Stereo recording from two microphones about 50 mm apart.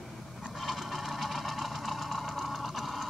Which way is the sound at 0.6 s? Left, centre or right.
Centre.